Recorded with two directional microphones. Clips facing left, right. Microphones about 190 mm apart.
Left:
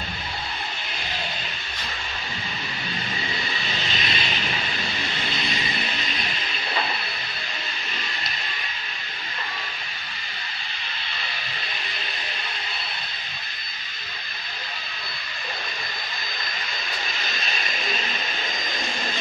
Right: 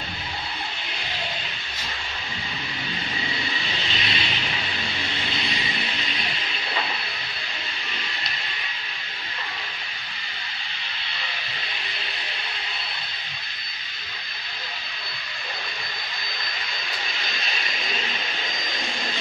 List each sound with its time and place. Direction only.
3.8 s vehicle: 45° left (ahead or behind)